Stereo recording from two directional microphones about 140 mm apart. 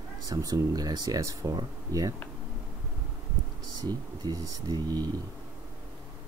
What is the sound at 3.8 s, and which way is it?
Speech, 25° right (ahead or behind).